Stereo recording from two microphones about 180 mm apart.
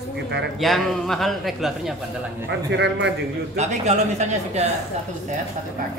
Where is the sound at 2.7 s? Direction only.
75° right (ahead or behind).